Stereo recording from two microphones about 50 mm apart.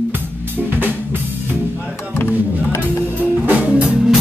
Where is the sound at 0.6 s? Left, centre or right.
Right.